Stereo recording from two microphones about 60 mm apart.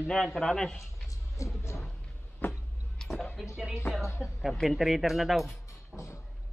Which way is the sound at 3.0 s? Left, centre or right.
Centre.